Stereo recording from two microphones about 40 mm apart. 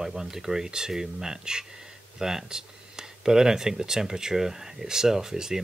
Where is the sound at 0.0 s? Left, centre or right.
Centre.